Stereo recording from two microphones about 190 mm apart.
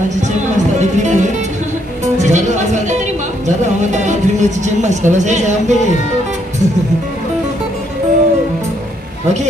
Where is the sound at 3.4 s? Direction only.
40° right (ahead or behind).